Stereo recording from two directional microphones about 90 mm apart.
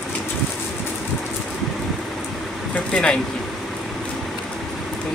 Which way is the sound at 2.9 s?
10° left (ahead or behind).